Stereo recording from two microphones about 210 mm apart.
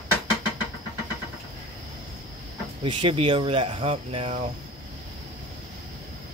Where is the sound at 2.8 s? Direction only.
25° right (ahead or behind).